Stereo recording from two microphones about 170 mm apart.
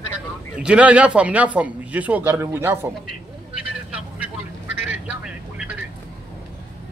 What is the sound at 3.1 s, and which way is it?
Vehicle, 5° right (ahead or behind).